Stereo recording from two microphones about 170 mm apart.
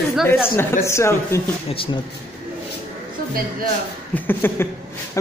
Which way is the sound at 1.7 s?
30° left (ahead or behind).